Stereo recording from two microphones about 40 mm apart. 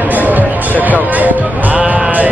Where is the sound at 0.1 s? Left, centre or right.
Right.